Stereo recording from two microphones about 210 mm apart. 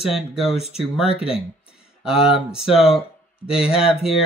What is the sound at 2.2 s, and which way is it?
Speech, 5° right (ahead or behind).